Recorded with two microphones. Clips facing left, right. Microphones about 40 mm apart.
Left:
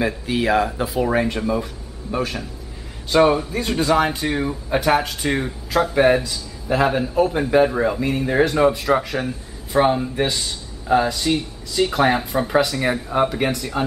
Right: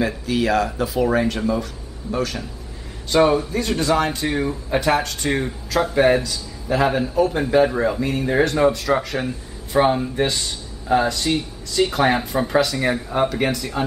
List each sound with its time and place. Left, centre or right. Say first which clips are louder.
0.0 s speech: even; centre